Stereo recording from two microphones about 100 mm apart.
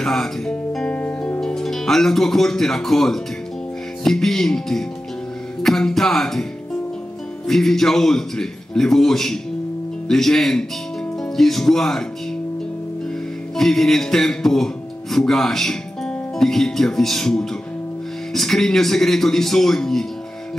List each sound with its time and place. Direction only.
0.0 s music: 5° left (ahead or behind)
4.0 s a man's voice: 5° left (ahead or behind)
13.6 s a man's voice: centre (ahead or behind)